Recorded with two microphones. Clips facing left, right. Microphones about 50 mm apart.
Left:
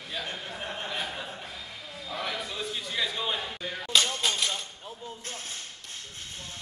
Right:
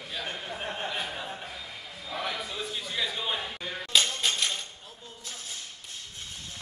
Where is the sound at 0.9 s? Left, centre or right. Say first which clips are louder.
Even; centre.